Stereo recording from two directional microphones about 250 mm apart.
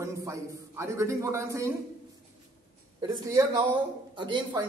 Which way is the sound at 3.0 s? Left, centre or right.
Centre.